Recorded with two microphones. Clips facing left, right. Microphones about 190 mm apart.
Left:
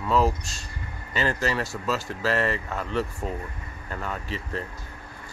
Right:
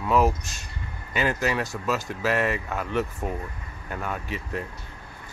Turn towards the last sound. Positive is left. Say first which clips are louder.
# right 1 dB
turn(degrees=-10)  # may be behind; listen again after turning